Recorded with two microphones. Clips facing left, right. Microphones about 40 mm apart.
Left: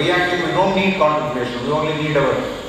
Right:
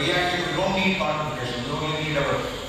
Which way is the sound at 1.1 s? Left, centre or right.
Left.